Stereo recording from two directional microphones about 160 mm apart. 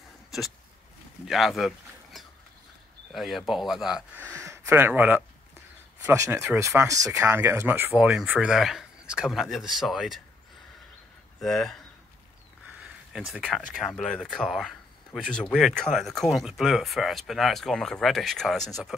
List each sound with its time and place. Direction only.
1.2 s speech: centre (ahead or behind)
3.1 s speech: centre (ahead or behind)
4.3 s a sound: 15° right (ahead or behind)
6.0 s speech: 15° right (ahead or behind); by 10.2 s centre (ahead or behind)
11.4 s speech: centre (ahead or behind)
12.8 s speech: 5° right (ahead or behind)